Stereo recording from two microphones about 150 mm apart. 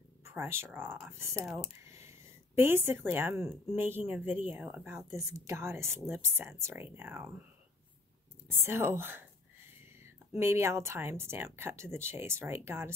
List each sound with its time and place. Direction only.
0.2 s a woman's voice: 15° right (ahead or behind)
1.9 s a sound: 20° right (ahead or behind)
3.7 s a woman's voice: 15° right (ahead or behind)
8.5 s a woman's voice: 15° right (ahead or behind)